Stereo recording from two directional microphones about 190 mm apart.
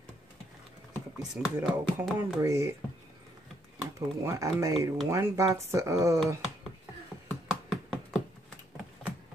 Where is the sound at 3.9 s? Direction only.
15° right (ahead or behind).